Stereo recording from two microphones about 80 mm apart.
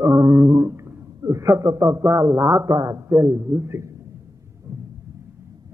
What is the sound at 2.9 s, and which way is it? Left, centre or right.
Speech, right.